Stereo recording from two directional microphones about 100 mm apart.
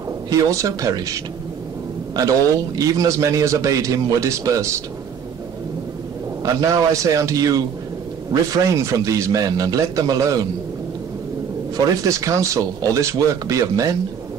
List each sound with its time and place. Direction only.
0.3 s a man's voice: 30° right (ahead or behind)
6.4 s a man's voice: 35° right (ahead or behind)
11.7 s a man's voice: 35° right (ahead or behind)